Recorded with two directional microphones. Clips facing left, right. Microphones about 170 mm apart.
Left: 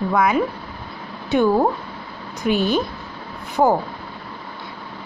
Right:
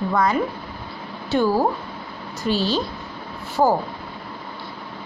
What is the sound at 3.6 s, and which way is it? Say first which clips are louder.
Speech: left 1 dB; 10° left (ahead or behind).